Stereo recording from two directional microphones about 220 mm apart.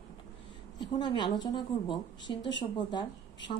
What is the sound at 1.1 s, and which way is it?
A woman's voice, 20° left (ahead or behind).